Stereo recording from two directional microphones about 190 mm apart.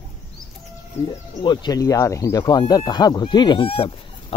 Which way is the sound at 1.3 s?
25° left (ahead or behind).